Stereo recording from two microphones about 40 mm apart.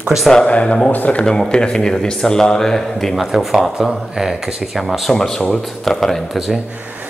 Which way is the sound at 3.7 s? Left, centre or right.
Centre.